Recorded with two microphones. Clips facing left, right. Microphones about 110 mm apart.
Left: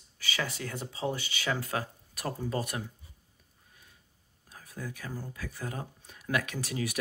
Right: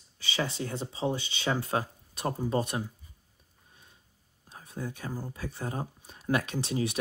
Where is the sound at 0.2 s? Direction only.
25° right (ahead or behind).